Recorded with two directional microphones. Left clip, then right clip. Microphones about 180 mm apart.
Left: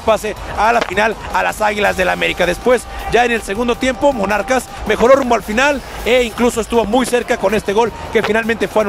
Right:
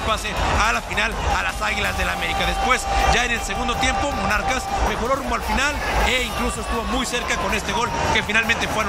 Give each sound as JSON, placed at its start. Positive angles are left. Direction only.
{"t": 0.1, "sound": "speech", "side_deg": 55}